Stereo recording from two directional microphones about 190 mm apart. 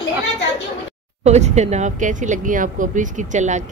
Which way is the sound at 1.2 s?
35° right (ahead or behind).